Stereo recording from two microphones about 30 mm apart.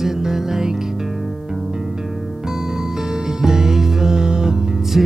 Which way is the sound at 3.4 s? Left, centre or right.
Centre.